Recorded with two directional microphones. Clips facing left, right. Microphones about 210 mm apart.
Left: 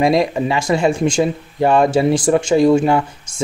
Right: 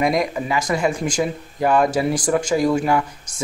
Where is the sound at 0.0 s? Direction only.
30° left (ahead or behind).